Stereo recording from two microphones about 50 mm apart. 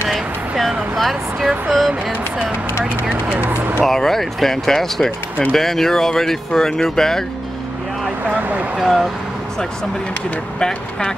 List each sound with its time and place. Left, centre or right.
0.1 s a sound: centre
0.9 s speech: centre
3.3 s speech: right
3.8 s speech: centre
8.4 s speech: right
8.7 s speech: centre
10.6 s speech: centre